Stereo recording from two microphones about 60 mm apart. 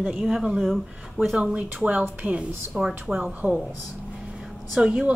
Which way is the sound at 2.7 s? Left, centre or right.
Centre.